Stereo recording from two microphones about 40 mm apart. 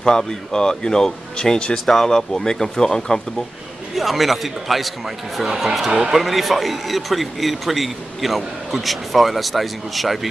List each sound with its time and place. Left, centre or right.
0.0 s speech: centre
3.9 s a man's voice: centre
5.9 s speech: centre
6.2 s a man's voice: centre